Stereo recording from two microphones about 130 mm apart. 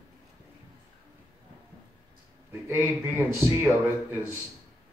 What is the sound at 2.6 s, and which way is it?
A man's voice, 20° right (ahead or behind).